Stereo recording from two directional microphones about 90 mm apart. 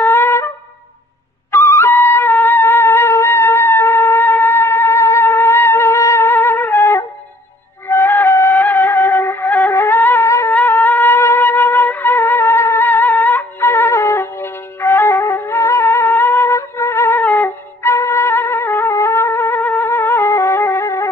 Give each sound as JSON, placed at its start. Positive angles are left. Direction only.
{"t": 0.0, "sound": "wind instrument", "side_deg": 25}
{"t": 1.5, "sound": "music", "side_deg": 30}
{"t": 10.5, "sound": "wind instrument", "side_deg": 20}
{"t": 17.2, "sound": "music", "side_deg": 25}